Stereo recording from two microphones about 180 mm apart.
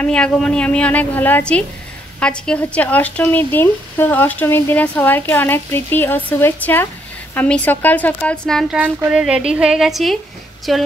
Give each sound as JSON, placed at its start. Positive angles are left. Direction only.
{"t": 0.0, "sound": "a woman's voice", "side_deg": 5}